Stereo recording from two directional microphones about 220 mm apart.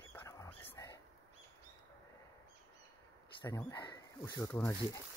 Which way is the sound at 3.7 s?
20° left (ahead or behind).